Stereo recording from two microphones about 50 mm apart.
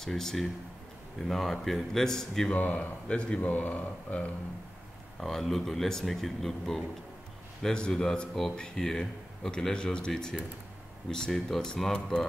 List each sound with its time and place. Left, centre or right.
0.0 s speech: centre
2.5 s speech: left
3.3 s speech: left
5.2 s speech: centre
7.6 s speech: centre